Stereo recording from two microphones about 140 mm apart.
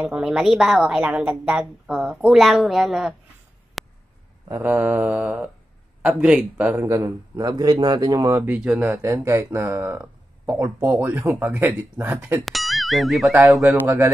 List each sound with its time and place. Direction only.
0.0 s a woman's voice: 5° right (ahead or behind)
3.8 s a sound: centre (ahead or behind)
4.6 s speech: 10° right (ahead or behind)
6.9 s speech: 25° right (ahead or behind)
12.4 s a woman's voice: centre (ahead or behind)
13.8 s speech: 20° right (ahead or behind)